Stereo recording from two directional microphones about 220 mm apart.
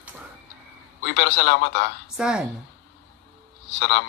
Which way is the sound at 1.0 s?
50° left (ahead or behind).